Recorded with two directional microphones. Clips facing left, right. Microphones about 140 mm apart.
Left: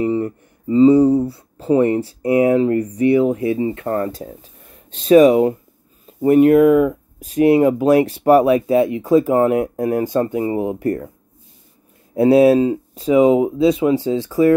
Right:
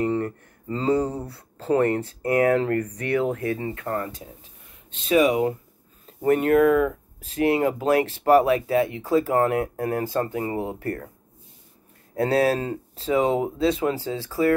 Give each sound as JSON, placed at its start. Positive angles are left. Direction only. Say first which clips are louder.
{"t": 0.0, "sound": "speech", "louder": "left 5 dB", "side_deg": 10}
{"t": 6.0, "sound": "speech", "louder": "left 9 dB", "side_deg": 10}
{"t": 12.2, "sound": "speech", "louder": "left 10 dB", "side_deg": 15}